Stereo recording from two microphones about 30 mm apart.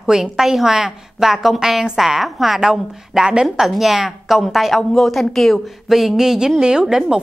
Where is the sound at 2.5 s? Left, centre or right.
Centre.